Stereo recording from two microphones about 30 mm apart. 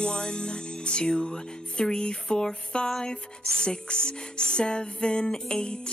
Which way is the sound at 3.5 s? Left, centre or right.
Left.